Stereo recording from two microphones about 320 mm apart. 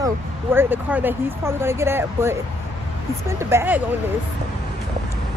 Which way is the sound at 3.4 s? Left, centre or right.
Centre.